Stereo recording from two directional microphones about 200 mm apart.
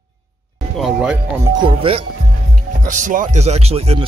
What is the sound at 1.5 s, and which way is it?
Speech, 25° right (ahead or behind).